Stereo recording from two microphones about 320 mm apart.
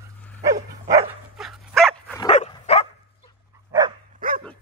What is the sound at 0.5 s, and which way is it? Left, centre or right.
Dog, right.